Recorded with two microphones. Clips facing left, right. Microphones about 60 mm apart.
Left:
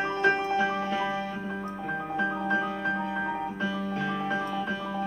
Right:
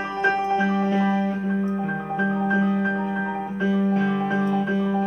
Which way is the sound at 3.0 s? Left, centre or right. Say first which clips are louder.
Right 4 dB; right.